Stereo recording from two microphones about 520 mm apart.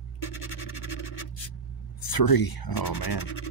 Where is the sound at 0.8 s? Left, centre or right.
Left.